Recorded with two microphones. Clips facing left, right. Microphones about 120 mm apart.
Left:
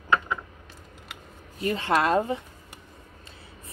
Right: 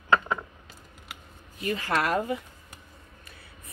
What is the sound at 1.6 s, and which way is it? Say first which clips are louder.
Speech: left 4 dB; 30° left (ahead or behind).